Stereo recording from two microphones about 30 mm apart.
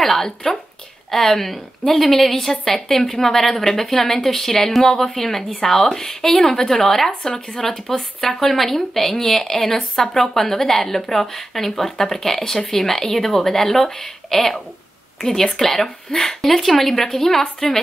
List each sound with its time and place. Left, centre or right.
0.0 s speech: centre
16.4 s speech: centre